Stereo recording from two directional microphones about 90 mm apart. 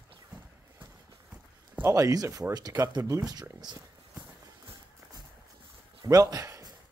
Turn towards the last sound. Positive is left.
turn(degrees=-40)  # may be behind; listen again after turning